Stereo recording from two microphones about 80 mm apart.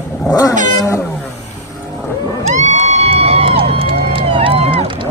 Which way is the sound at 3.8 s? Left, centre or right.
Right.